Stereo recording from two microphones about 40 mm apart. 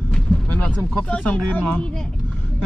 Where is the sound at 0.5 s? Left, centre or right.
Left.